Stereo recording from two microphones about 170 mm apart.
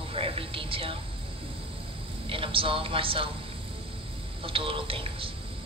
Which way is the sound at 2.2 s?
30° right (ahead or behind).